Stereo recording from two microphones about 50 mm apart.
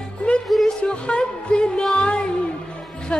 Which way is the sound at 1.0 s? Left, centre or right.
Centre.